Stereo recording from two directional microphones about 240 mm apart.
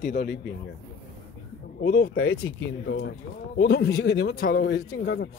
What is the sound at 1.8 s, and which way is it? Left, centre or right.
Speech, left.